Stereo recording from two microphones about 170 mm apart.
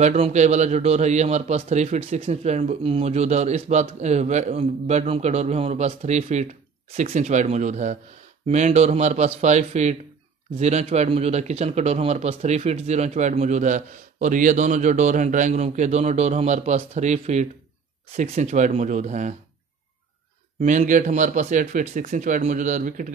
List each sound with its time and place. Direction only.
0.0 s a man's voice: 45° right (ahead or behind)
20.6 s speech: 50° right (ahead or behind)